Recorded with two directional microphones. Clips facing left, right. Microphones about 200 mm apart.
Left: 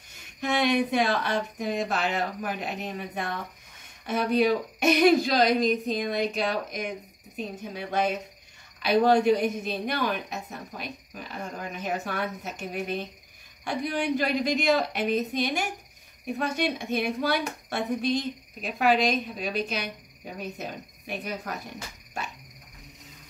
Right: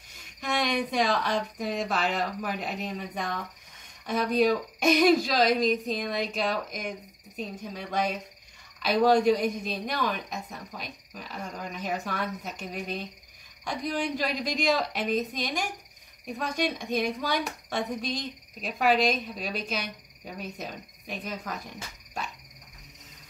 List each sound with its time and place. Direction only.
0.4 s speech: 5° left (ahead or behind)